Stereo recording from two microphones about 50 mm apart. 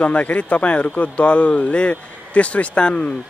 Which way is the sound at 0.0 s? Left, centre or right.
Left.